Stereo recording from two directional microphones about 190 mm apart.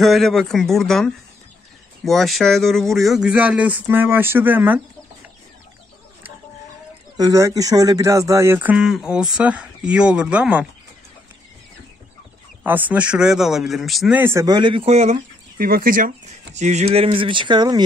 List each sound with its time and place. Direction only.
0.0 s speech: centre (ahead or behind)
7.2 s speech: 20° right (ahead or behind)
12.6 s speech: 10° right (ahead or behind)